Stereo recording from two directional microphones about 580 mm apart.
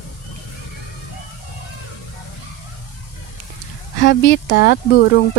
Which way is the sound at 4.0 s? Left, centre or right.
Centre.